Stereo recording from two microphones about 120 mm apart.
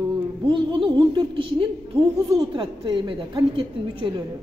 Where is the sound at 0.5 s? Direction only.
40° right (ahead or behind).